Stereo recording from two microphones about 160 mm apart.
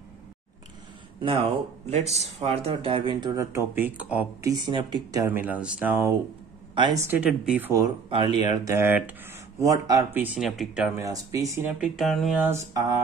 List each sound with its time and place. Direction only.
1.9 s speech: 40° right (ahead or behind); by 4.5 s 10° right (ahead or behind)
4.5 s speech: 25° right (ahead or behind)
5.2 s speech: 10° right (ahead or behind)
6.7 s a sound: 30° right (ahead or behind)
7.0 s speech: 10° right (ahead or behind)
8.1 s speech: 30° right (ahead or behind)
8.7 s speech: 10° right (ahead or behind)
10.2 s speech: 5° right (ahead or behind)
11.0 s speech: 20° right (ahead or behind)
11.8 s speech: centre (ahead or behind)
12.4 s speech: 15° right (ahead or behind)